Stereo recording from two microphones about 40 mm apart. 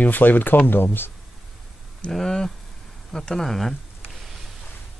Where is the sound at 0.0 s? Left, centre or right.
Left.